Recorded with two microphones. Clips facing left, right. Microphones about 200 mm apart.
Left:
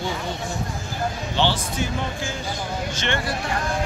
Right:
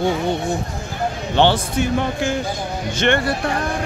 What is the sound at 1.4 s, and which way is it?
Speech, 60° right (ahead or behind).